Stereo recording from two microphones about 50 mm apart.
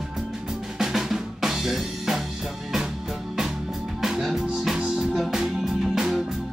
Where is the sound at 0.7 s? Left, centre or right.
Centre.